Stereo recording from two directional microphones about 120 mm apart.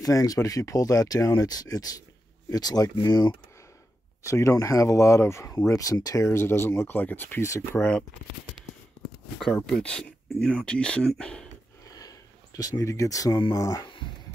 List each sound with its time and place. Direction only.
0.0 s speech: 30° left (ahead or behind)
4.2 s speech: 25° left (ahead or behind)
9.6 s speech: 10° left (ahead or behind)
11.9 s a sound: 30° left (ahead or behind)
13.5 s speech: 25° left (ahead or behind)